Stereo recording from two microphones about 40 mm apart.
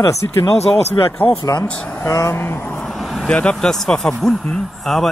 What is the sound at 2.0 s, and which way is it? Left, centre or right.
Speech, left.